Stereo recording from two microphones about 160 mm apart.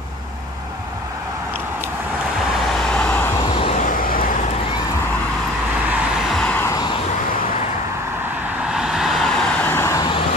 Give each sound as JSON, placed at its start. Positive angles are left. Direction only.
{"t": 2.9, "sound": "vehicle", "side_deg": 10}
{"t": 3.5, "sound": "vehicle", "side_deg": 35}
{"t": 3.8, "sound": "vehicle", "side_deg": 60}
{"t": 6.3, "sound": "vehicle", "side_deg": 10}
{"t": 8.7, "sound": "vehicle", "side_deg": -5}
{"t": 9.7, "sound": "vehicle", "side_deg": 15}